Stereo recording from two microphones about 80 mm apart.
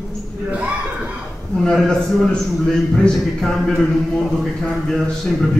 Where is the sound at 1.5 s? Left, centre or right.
Centre.